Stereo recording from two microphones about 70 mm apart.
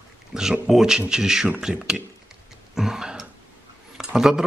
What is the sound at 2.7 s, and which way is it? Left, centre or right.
Throat clearing, centre.